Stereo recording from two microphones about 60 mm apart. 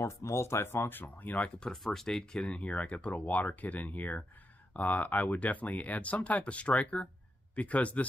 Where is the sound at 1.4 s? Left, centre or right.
Centre.